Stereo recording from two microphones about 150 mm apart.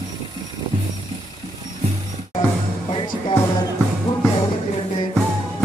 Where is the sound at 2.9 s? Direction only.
40° left (ahead or behind).